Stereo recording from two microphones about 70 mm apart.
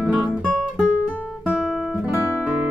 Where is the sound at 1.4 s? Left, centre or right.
Centre.